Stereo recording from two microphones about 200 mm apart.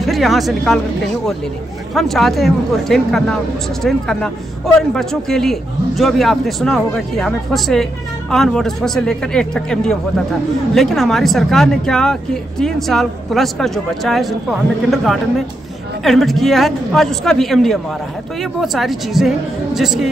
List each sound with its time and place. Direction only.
0.0 s a man's voice: centre (ahead or behind)
2.0 s a man's voice: centre (ahead or behind)